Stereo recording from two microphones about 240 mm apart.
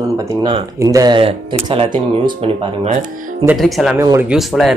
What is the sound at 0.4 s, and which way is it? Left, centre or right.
Speech, centre.